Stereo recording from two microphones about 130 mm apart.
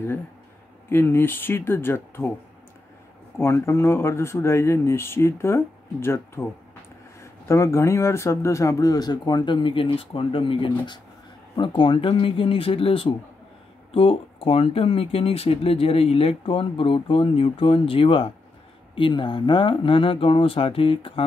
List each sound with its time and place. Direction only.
0.8 s speech: 15° left (ahead or behind)
3.3 s speech: 20° left (ahead or behind); by 21.1 s 45° left (ahead or behind)